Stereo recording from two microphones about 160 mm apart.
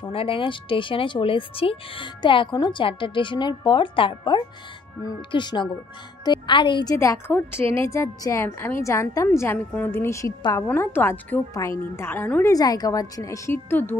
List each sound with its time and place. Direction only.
0.0 s a woman's voice: 35° left (ahead or behind); by 13.9 s 10° left (ahead or behind)